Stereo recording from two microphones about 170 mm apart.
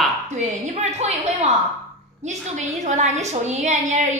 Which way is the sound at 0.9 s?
40° right (ahead or behind).